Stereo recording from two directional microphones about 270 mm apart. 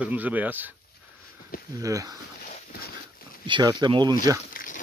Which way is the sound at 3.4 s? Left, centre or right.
Centre.